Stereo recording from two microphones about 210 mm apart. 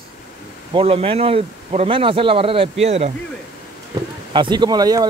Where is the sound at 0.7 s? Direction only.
25° right (ahead or behind).